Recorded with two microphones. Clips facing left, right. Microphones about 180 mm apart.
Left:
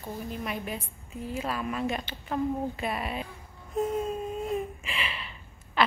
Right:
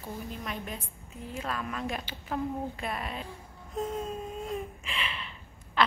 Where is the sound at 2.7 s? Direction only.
5° left (ahead or behind).